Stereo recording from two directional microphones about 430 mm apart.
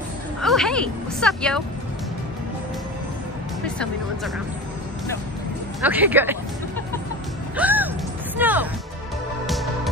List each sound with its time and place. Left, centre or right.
0.4 s a woman's voice: centre
3.6 s speech: centre
5.9 s speech: centre
7.5 s music: centre